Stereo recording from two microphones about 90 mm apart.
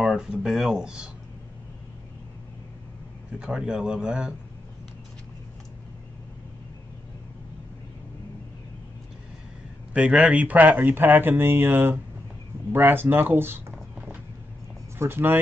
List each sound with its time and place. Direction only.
0.0 s speech: 5° right (ahead or behind)
3.3 s speech: 10° right (ahead or behind)
9.9 s speech: 10° right (ahead or behind)
15.0 s speech: 25° right (ahead or behind)